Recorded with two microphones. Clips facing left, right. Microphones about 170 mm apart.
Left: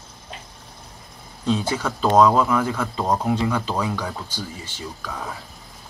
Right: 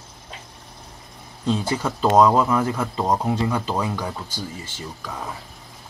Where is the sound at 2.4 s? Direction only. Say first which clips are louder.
Even; 25° right (ahead or behind).